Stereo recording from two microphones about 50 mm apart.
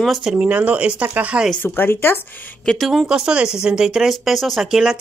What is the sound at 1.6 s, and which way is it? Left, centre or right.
Speech, left.